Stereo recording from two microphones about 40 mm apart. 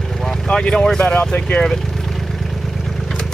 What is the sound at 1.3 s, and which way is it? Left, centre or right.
Speech, left.